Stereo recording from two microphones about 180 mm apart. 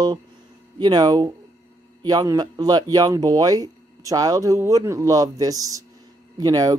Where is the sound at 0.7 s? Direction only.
20° right (ahead or behind).